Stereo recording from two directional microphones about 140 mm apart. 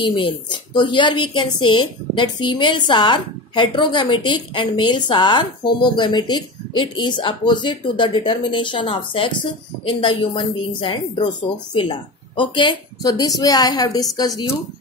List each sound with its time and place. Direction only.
0.0 s a woman's voice: 35° left (ahead or behind)